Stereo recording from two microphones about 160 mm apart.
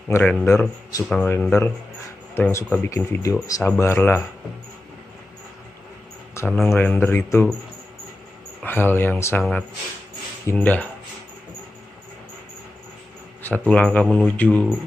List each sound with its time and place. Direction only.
0.1 s speech: 10° left (ahead or behind)
6.3 s speech: 5° left (ahead or behind)
8.6 s speech: 15° left (ahead or behind)
13.4 s speech: 10° left (ahead or behind)